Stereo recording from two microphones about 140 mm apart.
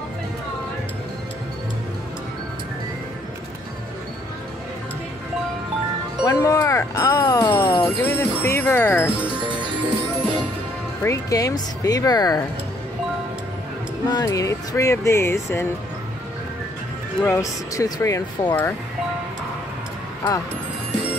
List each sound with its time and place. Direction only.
6.2 s music: 25° left (ahead or behind)
11.0 s speech: 20° left (ahead or behind)
14.0 s speech: 25° left (ahead or behind)
17.2 s speech: 20° left (ahead or behind)